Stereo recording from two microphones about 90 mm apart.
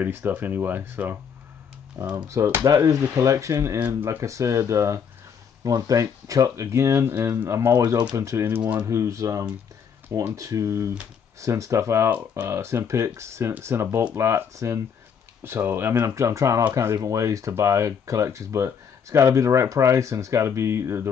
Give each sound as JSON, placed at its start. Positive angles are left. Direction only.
{"t": 0.0, "sound": "speech", "side_deg": -20}
{"t": 2.2, "sound": "speech", "side_deg": -30}
{"t": 8.2, "sound": "speech", "side_deg": -30}
{"t": 8.8, "sound": "speech", "side_deg": -35}
{"t": 16.0, "sound": "speech", "side_deg": -35}